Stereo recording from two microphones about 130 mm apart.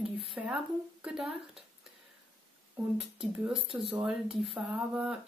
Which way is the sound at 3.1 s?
5° right (ahead or behind).